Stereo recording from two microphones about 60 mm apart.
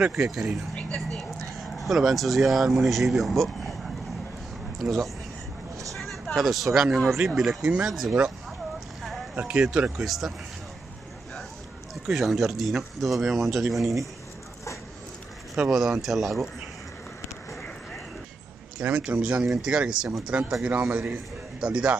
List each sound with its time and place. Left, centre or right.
0.1 s speech: centre
0.7 s a sound: left
1.3 s speech: centre
6.3 s speech: centre
9.3 s speech: centre
9.9 s speech: centre
12.1 s speech: centre
16.0 s speech: centre
18.8 s a man's voice: centre